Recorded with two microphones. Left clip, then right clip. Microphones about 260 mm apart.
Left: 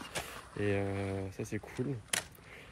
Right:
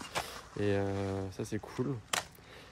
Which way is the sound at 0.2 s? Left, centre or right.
Right.